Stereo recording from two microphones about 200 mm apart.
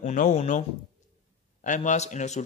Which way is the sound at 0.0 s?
40° left (ahead or behind).